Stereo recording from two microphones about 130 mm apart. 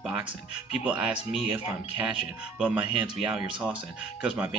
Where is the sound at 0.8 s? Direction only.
10° right (ahead or behind).